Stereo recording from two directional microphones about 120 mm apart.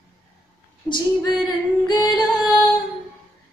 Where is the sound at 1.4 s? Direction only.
35° left (ahead or behind).